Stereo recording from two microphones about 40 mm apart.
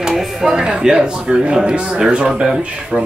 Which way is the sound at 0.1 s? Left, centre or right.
Centre.